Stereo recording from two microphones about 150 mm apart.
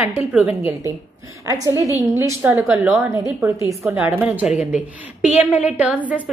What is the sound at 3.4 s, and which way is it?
Speech, 20° right (ahead or behind).